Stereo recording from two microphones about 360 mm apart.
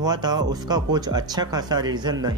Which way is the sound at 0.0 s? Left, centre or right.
Centre.